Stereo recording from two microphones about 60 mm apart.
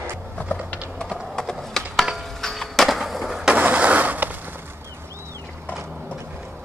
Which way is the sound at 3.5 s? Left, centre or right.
Right.